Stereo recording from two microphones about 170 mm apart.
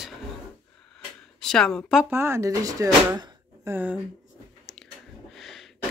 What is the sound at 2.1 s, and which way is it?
Speech, 15° right (ahead or behind).